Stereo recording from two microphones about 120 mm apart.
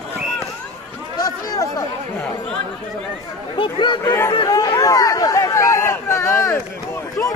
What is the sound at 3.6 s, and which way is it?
Speech, 40° left (ahead or behind).